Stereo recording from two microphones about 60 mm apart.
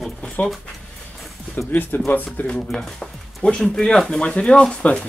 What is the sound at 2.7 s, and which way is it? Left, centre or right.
Speech, centre.